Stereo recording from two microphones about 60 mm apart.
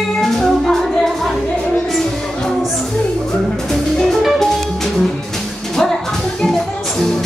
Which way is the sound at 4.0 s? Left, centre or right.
Centre.